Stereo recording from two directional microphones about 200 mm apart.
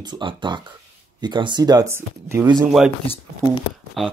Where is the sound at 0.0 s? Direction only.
25° right (ahead or behind); by 2.9 s 5° right (ahead or behind).